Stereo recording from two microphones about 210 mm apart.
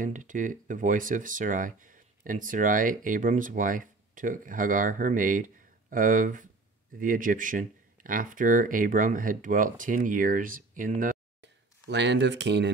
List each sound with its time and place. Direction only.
0.0 s speech: 40° right (ahead or behind)
11.9 s speech: 55° right (ahead or behind)